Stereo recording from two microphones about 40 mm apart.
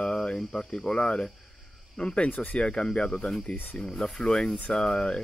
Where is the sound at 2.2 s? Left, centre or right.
Left.